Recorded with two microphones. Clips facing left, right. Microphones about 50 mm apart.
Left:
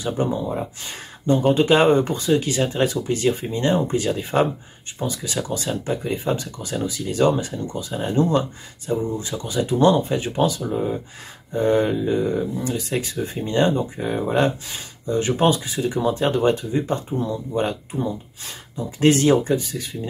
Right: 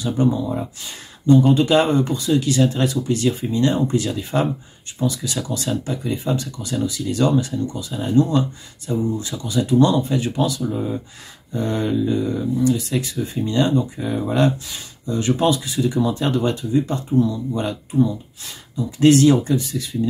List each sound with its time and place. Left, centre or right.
0.0 s speech: left
7.5 s speech: left
14.2 s speech: left